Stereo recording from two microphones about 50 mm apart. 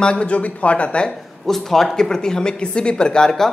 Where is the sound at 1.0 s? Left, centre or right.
Centre.